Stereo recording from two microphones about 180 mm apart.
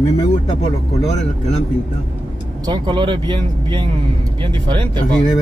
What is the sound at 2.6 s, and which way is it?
Speech, 25° right (ahead or behind).